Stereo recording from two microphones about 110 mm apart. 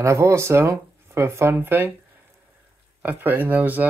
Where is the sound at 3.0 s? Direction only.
15° right (ahead or behind).